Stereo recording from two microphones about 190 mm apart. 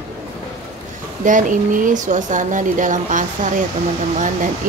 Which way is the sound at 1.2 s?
40° right (ahead or behind).